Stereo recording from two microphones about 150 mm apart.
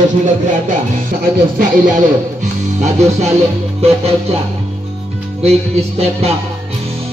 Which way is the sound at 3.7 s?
40° right (ahead or behind).